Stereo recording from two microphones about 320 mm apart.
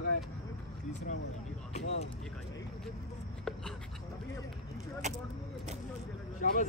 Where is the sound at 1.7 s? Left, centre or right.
Centre.